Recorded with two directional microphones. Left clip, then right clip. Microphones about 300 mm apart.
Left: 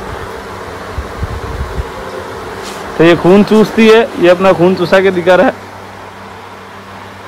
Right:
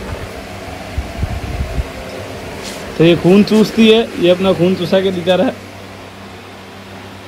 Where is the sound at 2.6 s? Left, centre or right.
Centre.